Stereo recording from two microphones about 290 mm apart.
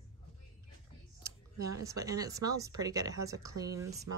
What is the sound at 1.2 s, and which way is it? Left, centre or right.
Speech, centre.